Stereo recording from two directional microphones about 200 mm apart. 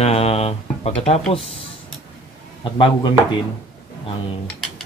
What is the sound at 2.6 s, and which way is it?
Speech, 25° left (ahead or behind).